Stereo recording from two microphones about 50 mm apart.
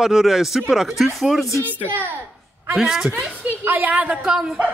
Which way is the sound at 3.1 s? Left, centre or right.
Right.